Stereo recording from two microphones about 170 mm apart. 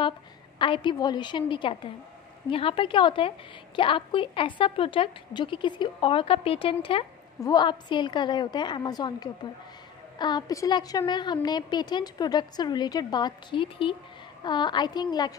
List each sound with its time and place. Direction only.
0.6 s a woman's voice: 30° left (ahead or behind)